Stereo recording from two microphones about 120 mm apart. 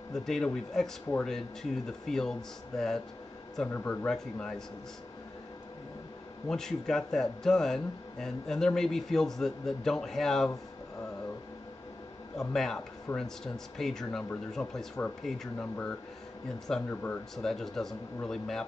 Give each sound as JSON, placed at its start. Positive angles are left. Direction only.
{"t": 0.1, "sound": "speech", "side_deg": 5}
{"t": 3.6, "sound": "a man's voice", "side_deg": 15}
{"t": 6.5, "sound": "speech", "side_deg": 5}
{"t": 12.4, "sound": "a man's voice", "side_deg": 5}
{"t": 17.4, "sound": "speech", "side_deg": 5}